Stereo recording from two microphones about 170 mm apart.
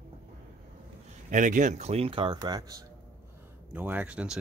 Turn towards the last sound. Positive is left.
turn(degrees=-5)  # may be behind; listen again after turning